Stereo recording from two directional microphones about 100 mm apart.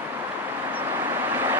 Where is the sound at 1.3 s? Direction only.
20° right (ahead or behind).